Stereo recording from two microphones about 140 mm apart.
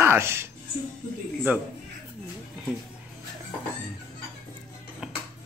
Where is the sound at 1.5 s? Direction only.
10° right (ahead or behind).